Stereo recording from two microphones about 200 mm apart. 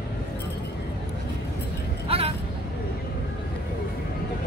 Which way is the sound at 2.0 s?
30° right (ahead or behind).